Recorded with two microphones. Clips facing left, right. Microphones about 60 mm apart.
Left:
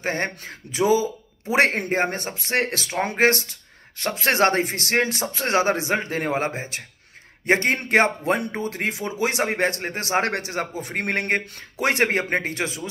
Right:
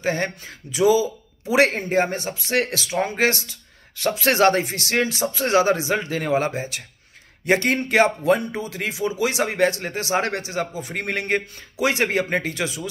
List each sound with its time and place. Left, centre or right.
0.0 s speech: left